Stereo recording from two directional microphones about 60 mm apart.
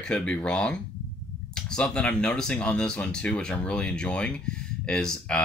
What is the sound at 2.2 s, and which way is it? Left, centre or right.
Speech, centre.